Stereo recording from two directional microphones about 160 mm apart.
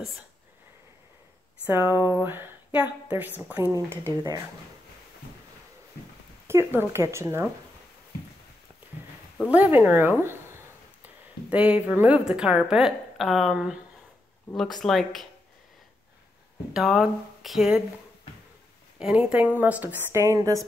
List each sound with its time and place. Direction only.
1.7 s speech: 15° right (ahead or behind)
6.4 s speech: 15° right (ahead or behind)
9.5 s speech: 10° right (ahead or behind)
11.5 s a woman's voice: 10° right (ahead or behind)
14.8 s a woman's voice: centre (ahead or behind)
16.7 s a woman's voice: centre (ahead or behind)
18.9 s speech: 5° right (ahead or behind)